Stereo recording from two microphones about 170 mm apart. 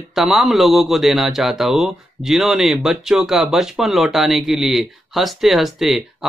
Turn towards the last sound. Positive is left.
turn(degrees=0)  # may be behind; listen again after turning